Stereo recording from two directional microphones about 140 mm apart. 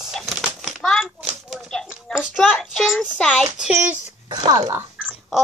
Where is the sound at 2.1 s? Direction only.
Centre (ahead or behind).